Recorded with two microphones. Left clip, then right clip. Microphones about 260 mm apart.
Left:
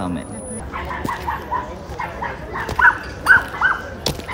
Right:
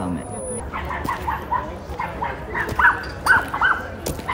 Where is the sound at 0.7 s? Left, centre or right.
Left.